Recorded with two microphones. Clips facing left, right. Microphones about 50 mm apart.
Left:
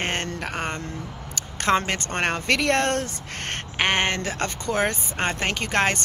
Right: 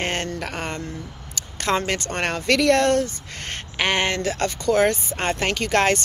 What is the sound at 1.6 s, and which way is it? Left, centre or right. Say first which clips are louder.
Speech: left 1 dB; left.